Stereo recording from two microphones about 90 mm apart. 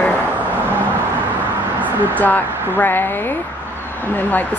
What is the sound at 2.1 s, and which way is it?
Speech, 20° left (ahead or behind).